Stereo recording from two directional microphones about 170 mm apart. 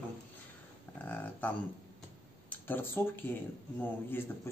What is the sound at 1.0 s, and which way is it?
Speech, 10° left (ahead or behind).